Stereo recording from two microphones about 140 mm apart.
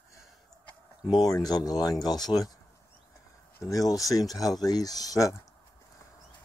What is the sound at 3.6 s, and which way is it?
Speech, 25° left (ahead or behind).